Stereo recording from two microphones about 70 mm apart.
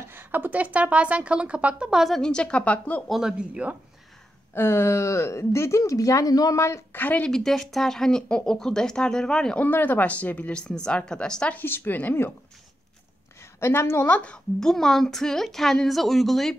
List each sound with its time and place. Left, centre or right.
0.1 s speech: right; by 2.1 s centre
2.1 s speech: centre
3.1 s speech: centre
4.6 s speech: left
6.9 s speech: left
7.2 s speech: centre
9.6 s speech: left
11.5 s speech: left
13.6 s a woman's voice: left
14.0 s a woman's voice: centre